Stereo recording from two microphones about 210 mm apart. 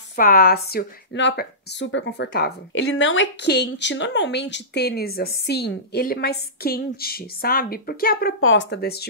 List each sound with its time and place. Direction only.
0.1 s speech: 45° left (ahead or behind)
8.4 s speech: 65° left (ahead or behind)